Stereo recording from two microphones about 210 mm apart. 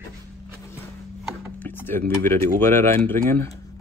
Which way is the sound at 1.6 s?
10° left (ahead or behind).